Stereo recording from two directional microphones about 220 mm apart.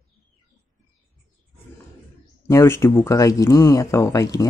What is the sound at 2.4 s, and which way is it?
Speech, 10° left (ahead or behind).